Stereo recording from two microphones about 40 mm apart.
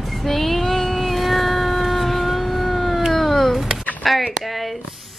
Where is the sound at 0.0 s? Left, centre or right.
Centre.